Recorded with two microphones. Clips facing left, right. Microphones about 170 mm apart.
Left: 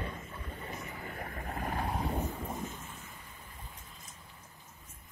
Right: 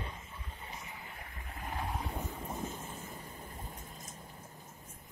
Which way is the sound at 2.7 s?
35° right (ahead or behind).